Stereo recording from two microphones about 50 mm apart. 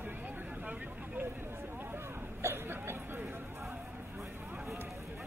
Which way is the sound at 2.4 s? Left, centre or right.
Right.